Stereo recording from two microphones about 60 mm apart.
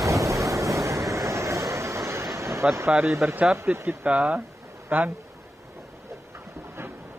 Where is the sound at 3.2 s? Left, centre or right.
Centre.